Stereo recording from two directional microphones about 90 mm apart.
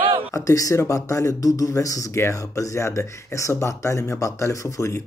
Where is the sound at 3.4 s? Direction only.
35° left (ahead or behind).